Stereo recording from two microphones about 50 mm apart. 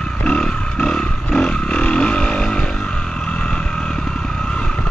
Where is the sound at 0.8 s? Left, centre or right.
Centre.